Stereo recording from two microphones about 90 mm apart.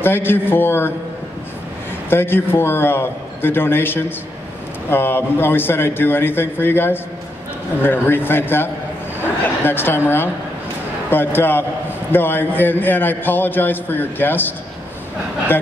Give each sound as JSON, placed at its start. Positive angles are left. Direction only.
{"t": 0.0, "sound": "a man's voice", "side_deg": 25}
{"t": 2.0, "sound": "a man's voice", "side_deg": 25}